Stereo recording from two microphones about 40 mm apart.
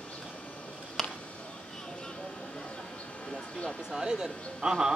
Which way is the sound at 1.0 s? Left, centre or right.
Centre.